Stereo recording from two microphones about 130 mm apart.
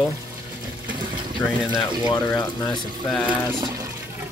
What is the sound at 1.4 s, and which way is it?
Speech, 15° left (ahead or behind).